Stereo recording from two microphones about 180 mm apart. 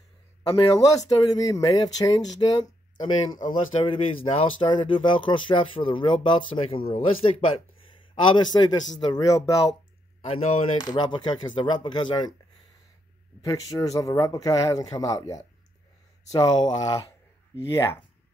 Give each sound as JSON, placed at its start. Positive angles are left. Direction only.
{"t": 0.6, "sound": "speech", "side_deg": 30}
{"t": 3.4, "sound": "speech", "side_deg": 30}
{"t": 10.2, "sound": "speech", "side_deg": 35}
{"t": 13.4, "sound": "speech", "side_deg": 20}